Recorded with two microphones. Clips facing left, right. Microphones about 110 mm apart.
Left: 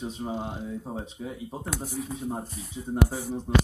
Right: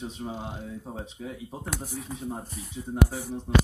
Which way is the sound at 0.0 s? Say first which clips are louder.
Left 3 dB; 20° left (ahead or behind).